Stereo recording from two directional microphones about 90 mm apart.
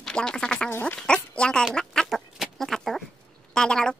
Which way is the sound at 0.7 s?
25° left (ahead or behind).